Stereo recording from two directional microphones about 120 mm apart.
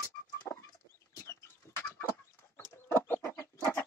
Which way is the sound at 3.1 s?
20° left (ahead or behind).